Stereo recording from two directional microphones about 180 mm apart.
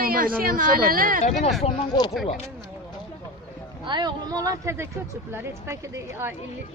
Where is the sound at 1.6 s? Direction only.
25° left (ahead or behind).